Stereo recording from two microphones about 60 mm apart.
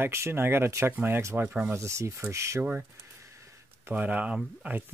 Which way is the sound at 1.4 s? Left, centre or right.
Centre.